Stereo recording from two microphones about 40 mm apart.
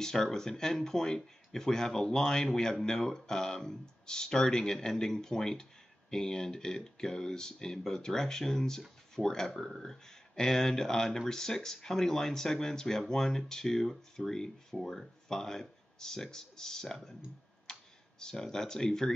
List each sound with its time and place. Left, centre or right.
0.0 s speech: centre
10.0 s a sound: centre
10.5 s speech: centre
17.7 s computer keyboard: centre
18.2 s speech: centre